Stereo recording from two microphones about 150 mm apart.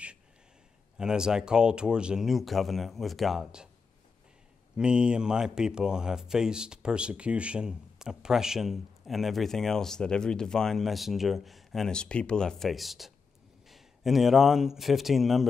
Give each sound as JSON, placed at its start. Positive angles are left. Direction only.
{"t": 0.9, "sound": "speech", "side_deg": -5}
{"t": 4.7, "sound": "speech", "side_deg": -5}